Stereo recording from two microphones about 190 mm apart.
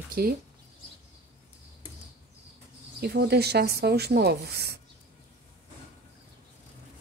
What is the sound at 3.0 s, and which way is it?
Speech, 55° right (ahead or behind).